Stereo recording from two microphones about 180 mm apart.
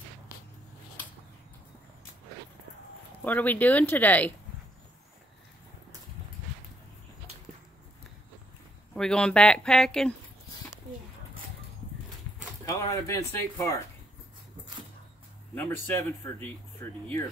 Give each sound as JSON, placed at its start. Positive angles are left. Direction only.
{"t": 3.3, "sound": "speech", "side_deg": 10}
{"t": 8.9, "sound": "speech", "side_deg": 5}
{"t": 12.6, "sound": "speech", "side_deg": 20}
{"t": 15.5, "sound": "speech", "side_deg": 10}